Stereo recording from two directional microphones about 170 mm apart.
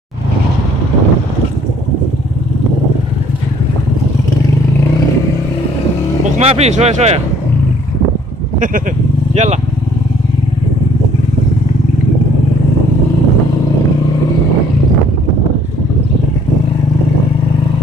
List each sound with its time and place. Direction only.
6.3 s speech: 40° right (ahead or behind)
9.3 s speech: 40° right (ahead or behind)